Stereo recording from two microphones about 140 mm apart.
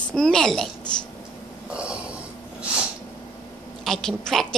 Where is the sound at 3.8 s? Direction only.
5° left (ahead or behind).